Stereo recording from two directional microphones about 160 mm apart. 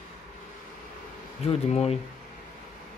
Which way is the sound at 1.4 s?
40° left (ahead or behind).